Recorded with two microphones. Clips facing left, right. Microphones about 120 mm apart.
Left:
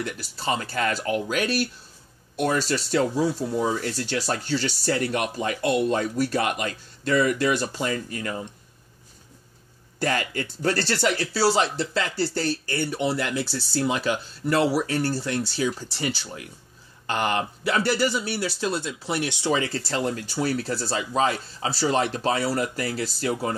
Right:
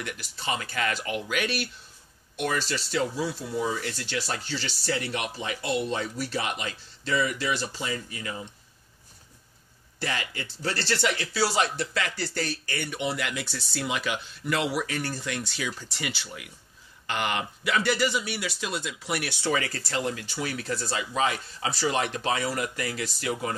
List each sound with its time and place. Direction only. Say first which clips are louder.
0.0 s speech: left 5 dB; 35° left (ahead or behind)
9.9 s speech: left 7 dB; 45° left (ahead or behind)